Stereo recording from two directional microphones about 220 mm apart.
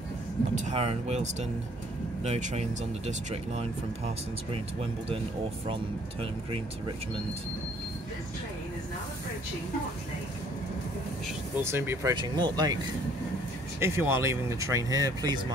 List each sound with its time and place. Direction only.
0.6 s speech: 30° right (ahead or behind)
11.5 s speech: 10° right (ahead or behind)
13.7 s speech: 10° right (ahead or behind)